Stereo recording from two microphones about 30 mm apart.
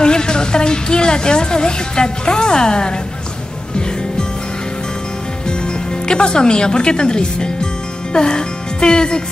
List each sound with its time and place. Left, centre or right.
0.0 s a woman's voice: left
5.5 s speech: left
8.1 s music: left